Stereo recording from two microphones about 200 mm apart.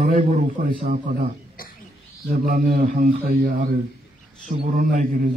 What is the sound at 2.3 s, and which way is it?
A man's voice, 40° right (ahead or behind).